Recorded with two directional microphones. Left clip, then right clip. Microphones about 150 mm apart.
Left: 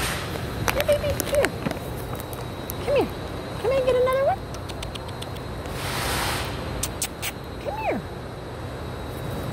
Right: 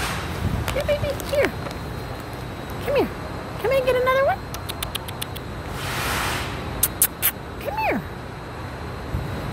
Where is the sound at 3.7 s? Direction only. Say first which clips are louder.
Right 1 dB; 35° right (ahead or behind).